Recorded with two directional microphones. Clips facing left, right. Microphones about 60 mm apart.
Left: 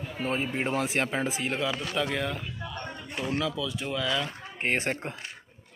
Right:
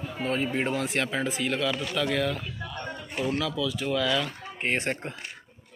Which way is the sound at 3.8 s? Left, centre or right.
Centre.